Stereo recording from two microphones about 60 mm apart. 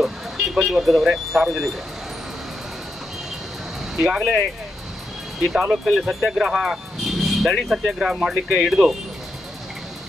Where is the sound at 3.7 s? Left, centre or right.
Centre.